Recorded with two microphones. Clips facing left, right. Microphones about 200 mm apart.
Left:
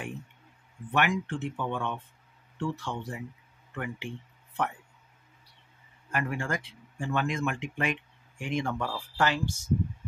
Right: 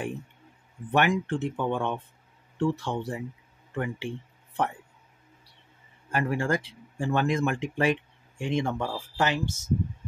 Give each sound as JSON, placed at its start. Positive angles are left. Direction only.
{"t": 0.9, "sound": "speech", "side_deg": -35}
{"t": 6.1, "sound": "speech", "side_deg": -35}